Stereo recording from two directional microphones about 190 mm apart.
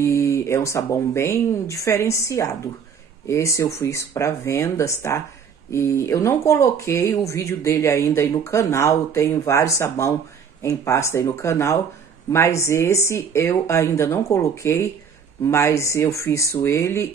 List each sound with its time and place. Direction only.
0.0 s speech: 15° left (ahead or behind)